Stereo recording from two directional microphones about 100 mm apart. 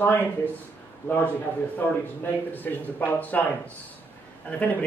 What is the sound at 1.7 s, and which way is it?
Speech, 20° left (ahead or behind).